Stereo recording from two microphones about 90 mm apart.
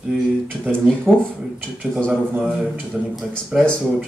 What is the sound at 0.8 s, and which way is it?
A man's voice, 10° left (ahead or behind).